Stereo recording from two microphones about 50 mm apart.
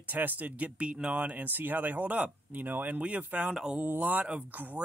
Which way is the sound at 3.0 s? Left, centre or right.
Right.